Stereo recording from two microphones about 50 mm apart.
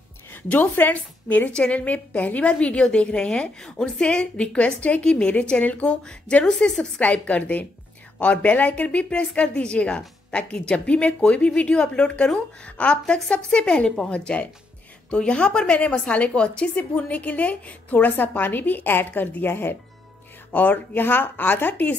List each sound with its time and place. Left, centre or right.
0.5 s a woman's voice: left
1.5 s a woman's voice: left
6.4 s a woman's voice: centre
7.0 s a woman's voice: left
9.2 s a woman's voice: centre; by 19.8 s left
20.5 s a woman's voice: left